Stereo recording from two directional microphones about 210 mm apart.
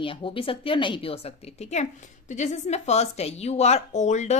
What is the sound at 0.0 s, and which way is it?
A woman's voice, 25° left (ahead or behind).